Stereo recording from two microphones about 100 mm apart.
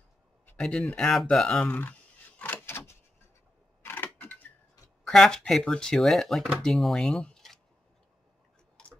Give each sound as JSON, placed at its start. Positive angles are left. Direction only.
{"t": 0.6, "sound": "speech", "side_deg": 10}
{"t": 1.8, "sound": "a sound", "side_deg": 20}
{"t": 3.8, "sound": "camera", "side_deg": 20}
{"t": 5.0, "sound": "speech", "side_deg": 5}